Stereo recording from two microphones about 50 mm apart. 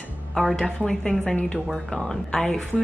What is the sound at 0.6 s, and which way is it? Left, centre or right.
Speech, centre.